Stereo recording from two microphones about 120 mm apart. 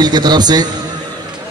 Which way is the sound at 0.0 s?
35° right (ahead or behind).